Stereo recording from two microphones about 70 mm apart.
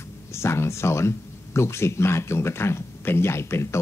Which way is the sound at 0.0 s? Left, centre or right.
Left.